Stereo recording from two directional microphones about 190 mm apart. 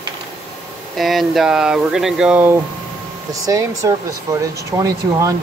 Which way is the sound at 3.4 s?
15° right (ahead or behind).